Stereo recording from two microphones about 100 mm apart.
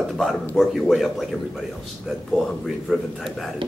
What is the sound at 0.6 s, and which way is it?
Speech, centre (ahead or behind).